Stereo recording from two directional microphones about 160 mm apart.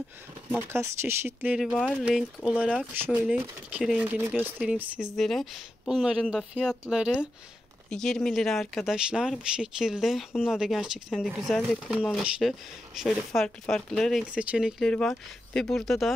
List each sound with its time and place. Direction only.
0.5 s speech: 15° right (ahead or behind)
1.7 s speech: centre (ahead or behind)
14.2 s speech: 10° right (ahead or behind)
14.9 s speech: 5° left (ahead or behind)